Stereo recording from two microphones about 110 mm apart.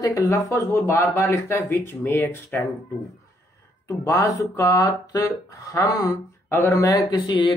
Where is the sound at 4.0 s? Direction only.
30° left (ahead or behind).